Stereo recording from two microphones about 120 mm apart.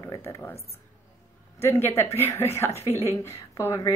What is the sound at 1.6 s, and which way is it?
A woman's voice, 20° left (ahead or behind).